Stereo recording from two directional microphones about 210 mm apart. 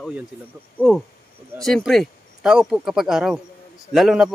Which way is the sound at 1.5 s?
Centre (ahead or behind).